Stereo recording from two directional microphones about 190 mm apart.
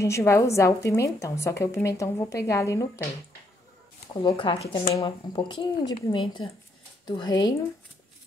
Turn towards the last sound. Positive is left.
turn(degrees=20)  # may be behind; listen again after turning